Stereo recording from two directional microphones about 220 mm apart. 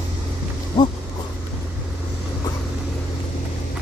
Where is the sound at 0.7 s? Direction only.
20° left (ahead or behind).